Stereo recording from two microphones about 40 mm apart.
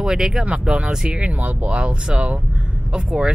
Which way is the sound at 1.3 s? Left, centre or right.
Right.